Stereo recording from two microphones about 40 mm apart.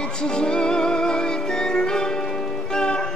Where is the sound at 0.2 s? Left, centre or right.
Left.